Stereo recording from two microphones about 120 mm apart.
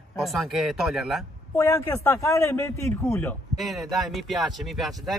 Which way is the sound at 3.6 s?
Centre (ahead or behind).